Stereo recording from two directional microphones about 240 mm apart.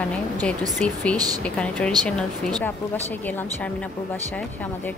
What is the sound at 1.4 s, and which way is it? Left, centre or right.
A woman's voice, centre.